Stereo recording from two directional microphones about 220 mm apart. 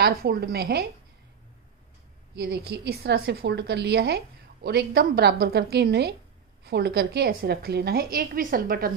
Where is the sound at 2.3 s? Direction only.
45° right (ahead or behind).